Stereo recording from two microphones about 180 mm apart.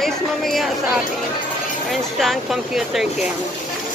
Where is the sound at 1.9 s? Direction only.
Centre (ahead or behind).